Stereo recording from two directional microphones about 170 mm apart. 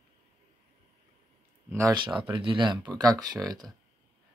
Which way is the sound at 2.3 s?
30° right (ahead or behind).